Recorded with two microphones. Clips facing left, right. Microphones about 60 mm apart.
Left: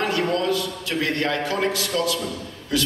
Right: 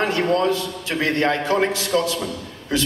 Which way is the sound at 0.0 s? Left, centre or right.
Right.